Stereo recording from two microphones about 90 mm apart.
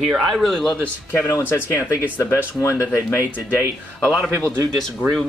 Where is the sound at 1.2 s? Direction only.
25° left (ahead or behind).